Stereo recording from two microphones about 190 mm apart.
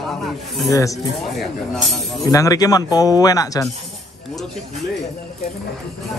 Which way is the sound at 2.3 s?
20° left (ahead or behind).